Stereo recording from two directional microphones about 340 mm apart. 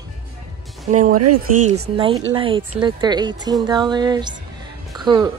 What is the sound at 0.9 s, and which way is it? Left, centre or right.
Speech, right.